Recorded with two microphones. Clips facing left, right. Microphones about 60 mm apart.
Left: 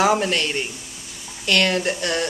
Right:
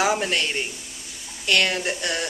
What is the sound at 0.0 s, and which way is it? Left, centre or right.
Speech, centre.